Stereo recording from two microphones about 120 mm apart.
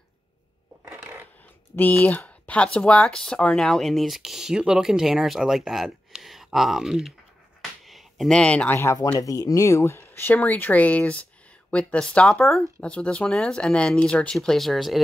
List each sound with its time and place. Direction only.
0.8 s a sound: 20° right (ahead or behind)
1.8 s speech: 15° left (ahead or behind)
9.2 s speech: 30° left (ahead or behind); by 15.0 s centre (ahead or behind)